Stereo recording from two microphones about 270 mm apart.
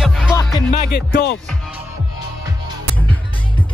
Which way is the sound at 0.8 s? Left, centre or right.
Left.